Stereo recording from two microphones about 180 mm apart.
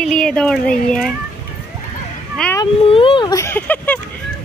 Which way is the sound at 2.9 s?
30° left (ahead or behind).